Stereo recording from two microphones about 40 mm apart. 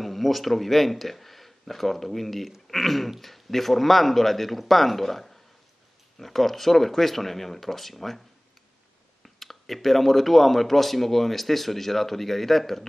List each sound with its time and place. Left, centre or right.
0.0 s speech: centre
9.2 s speech: centre